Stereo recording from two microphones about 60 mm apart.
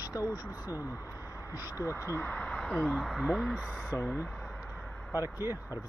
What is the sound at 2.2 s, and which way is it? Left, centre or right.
Speech, left.